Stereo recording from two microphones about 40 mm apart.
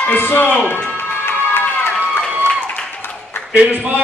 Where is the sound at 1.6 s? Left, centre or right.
Left.